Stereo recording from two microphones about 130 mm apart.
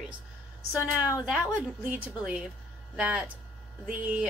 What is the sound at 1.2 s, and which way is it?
A woman's voice, 10° right (ahead or behind).